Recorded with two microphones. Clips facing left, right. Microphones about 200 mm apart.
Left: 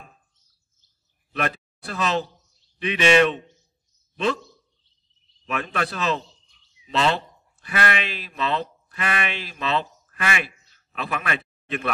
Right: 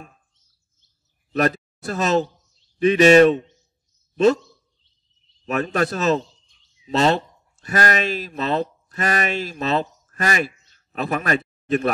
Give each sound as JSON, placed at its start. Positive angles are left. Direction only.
{"t": 1.3, "sound": "speech", "side_deg": -45}
{"t": 5.4, "sound": "a man's voice", "side_deg": -45}